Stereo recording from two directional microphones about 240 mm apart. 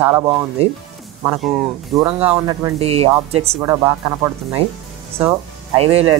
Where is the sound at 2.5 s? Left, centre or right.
Right.